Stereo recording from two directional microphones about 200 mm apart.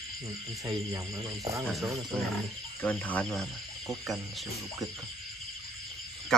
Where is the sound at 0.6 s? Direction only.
15° right (ahead or behind).